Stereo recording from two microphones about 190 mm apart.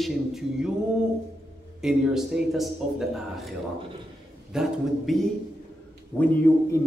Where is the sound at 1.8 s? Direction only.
5° right (ahead or behind).